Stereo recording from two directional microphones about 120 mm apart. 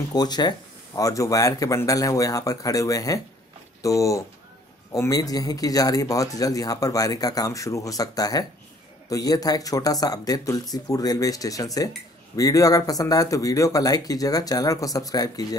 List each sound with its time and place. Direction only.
0.1 s speech: 35° left (ahead or behind)